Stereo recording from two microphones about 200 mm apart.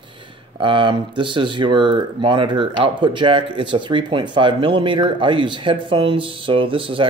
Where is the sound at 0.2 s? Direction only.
25° right (ahead or behind).